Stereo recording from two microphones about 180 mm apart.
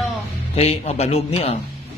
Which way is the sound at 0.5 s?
35° left (ahead or behind).